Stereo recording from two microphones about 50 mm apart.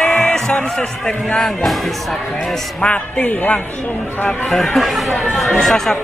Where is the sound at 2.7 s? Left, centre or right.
Left.